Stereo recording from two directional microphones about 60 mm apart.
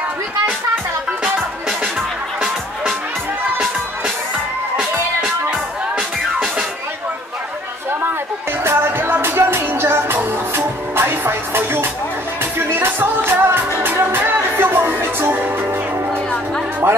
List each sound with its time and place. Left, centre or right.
8.6 s music: right
16.8 s music: right